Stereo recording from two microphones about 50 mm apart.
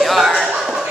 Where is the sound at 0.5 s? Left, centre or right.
Centre.